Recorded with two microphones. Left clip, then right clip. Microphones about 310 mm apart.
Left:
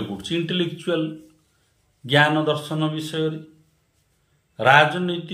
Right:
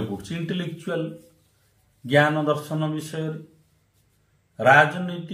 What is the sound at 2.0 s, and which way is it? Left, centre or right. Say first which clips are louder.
Speech: left 2 dB; centre.